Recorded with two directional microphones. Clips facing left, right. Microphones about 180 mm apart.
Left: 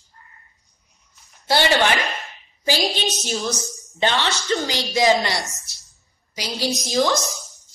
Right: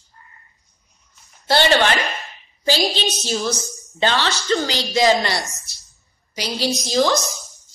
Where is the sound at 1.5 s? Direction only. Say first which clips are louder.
Right 2 dB; 15° left (ahead or behind).